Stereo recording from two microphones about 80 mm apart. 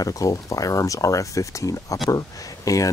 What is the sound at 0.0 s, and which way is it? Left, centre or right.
Speech, left.